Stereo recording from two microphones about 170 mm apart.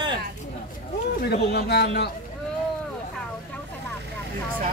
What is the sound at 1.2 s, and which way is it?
Speech, 70° left (ahead or behind).